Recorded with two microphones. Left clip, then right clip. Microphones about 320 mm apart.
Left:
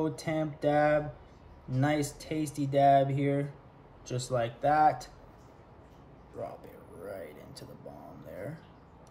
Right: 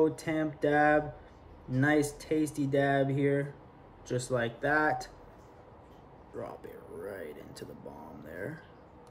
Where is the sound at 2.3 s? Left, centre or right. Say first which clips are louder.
Even; centre.